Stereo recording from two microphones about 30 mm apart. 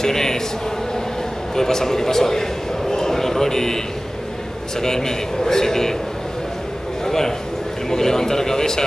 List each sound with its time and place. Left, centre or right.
0.0 s a man's voice: centre
1.5 s a man's voice: centre
2.9 s a sound: centre
4.8 s a man's voice: centre
7.1 s a man's voice: centre